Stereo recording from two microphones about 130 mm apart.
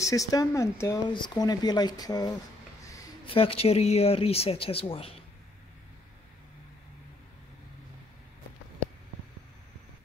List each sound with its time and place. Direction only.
0.0 s a woman's voice: 25° left (ahead or behind)
1.0 s speech: 35° left (ahead or behind)
3.3 s speech: 45° left (ahead or behind)